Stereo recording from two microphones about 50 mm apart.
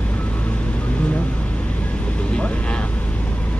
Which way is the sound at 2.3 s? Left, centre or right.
Left.